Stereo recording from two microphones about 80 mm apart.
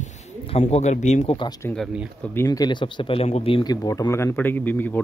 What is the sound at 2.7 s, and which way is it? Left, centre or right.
Speech, left.